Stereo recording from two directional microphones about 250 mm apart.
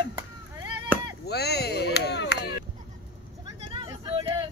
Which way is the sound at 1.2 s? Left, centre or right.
Left.